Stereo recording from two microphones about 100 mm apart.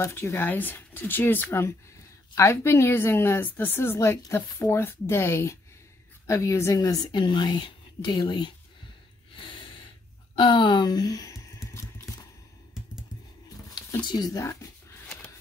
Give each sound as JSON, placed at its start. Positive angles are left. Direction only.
{"t": 0.0, "sound": "a woman's voice", "side_deg": 30}
{"t": 7.2, "sound": "speech", "side_deg": 50}
{"t": 9.3, "sound": "gasp", "side_deg": 55}
{"t": 10.3, "sound": "a sound", "side_deg": 55}
{"t": 14.0, "sound": "speech", "side_deg": 40}
{"t": 15.0, "sound": "a sound", "side_deg": 10}